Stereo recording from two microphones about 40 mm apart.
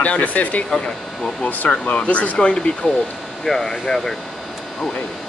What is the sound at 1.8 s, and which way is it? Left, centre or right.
Speech, left.